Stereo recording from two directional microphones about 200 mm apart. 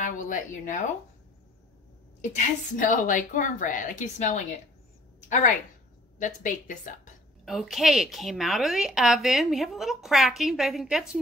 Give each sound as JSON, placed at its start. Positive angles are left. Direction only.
{"t": 0.0, "sound": "speech", "side_deg": 40}
{"t": 2.3, "sound": "a woman's voice", "side_deg": 40}
{"t": 7.4, "sound": "a woman's voice", "side_deg": 0}